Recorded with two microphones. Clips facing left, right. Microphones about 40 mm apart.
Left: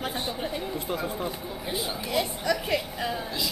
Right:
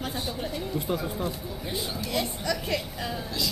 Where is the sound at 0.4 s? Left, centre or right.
Centre.